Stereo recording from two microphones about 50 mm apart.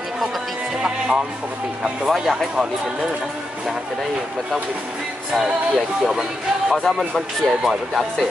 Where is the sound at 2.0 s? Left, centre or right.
Centre.